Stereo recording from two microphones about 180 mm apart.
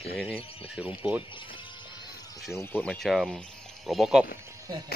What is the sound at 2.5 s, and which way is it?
Speech, 10° left (ahead or behind).